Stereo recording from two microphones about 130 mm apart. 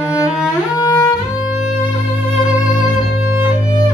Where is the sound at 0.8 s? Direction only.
25° left (ahead or behind).